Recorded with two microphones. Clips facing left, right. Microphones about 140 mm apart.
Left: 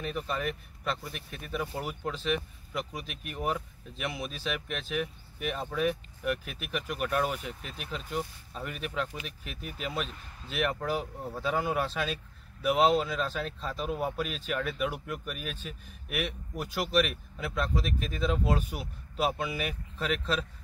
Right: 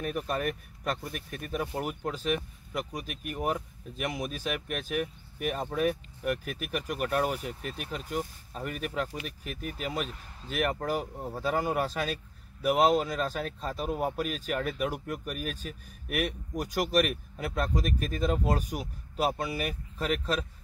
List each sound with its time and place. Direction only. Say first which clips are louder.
0.0 s a man's voice: right 2 dB; 50° right (ahead or behind)
3.3 s speech: right 1 dB; 5° right (ahead or behind)
3.9 s a man's voice: right 3 dB; 45° right (ahead or behind)
9.7 s speech: right 1 dB; 5° right (ahead or behind)
10.5 s speech: right 1 dB; 40° right (ahead or behind)
12.7 s speech: right 1 dB; 5° right (ahead or behind)
13.0 s a man's voice: right 1 dB; 45° right (ahead or behind)